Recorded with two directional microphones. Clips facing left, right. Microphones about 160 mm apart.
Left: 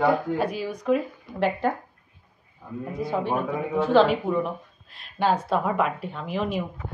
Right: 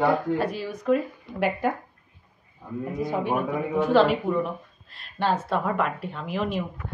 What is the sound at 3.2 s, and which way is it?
Speech, 15° right (ahead or behind).